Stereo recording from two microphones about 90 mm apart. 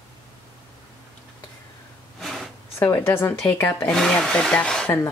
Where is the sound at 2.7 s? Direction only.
25° left (ahead or behind).